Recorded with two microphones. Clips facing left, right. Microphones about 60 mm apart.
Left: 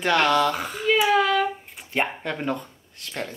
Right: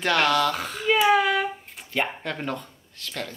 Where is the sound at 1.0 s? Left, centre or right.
Centre.